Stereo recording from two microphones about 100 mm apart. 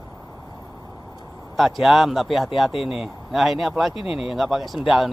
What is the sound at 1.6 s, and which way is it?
Speech, centre (ahead or behind).